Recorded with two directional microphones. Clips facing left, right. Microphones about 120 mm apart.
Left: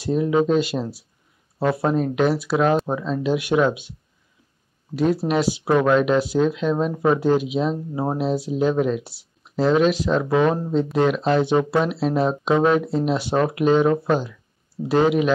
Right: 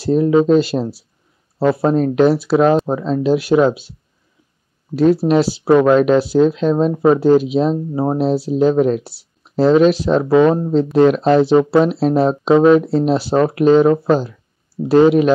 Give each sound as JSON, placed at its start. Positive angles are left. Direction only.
{"t": 0.0, "sound": "speech", "side_deg": -35}
{"t": 5.4, "sound": "speech", "side_deg": -30}
{"t": 8.2, "sound": "speech", "side_deg": -35}